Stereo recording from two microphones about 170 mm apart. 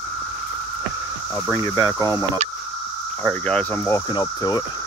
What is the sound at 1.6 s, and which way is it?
Speech, 20° left (ahead or behind).